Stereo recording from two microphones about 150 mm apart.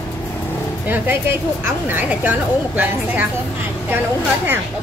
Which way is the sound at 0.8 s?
10° right (ahead or behind).